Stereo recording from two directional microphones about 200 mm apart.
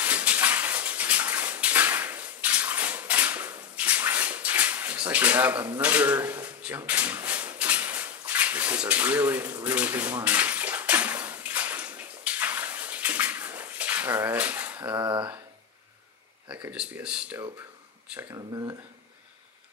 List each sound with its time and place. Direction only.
0.0 s bathtub: 10° right (ahead or behind)
15.0 s speech: 25° right (ahead or behind)
16.4 s speech: 5° right (ahead or behind)
18.3 s speech: 20° right (ahead or behind)